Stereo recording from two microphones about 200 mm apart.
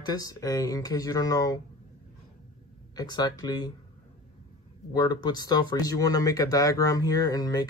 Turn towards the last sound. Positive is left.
turn(degrees=20)  # may be behind; listen again after turning